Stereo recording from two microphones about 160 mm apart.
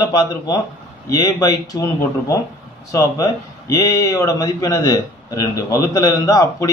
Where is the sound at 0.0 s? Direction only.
25° left (ahead or behind).